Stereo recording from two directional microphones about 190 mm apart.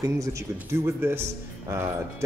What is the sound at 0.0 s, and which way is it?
Speech, 15° right (ahead or behind).